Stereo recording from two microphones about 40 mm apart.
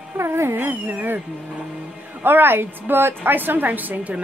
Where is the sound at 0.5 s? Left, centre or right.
Right.